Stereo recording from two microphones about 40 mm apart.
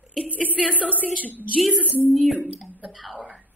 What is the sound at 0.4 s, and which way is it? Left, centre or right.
Speech, left.